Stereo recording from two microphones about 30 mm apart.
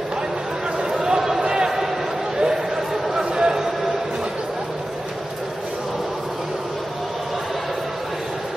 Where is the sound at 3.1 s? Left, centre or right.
Right.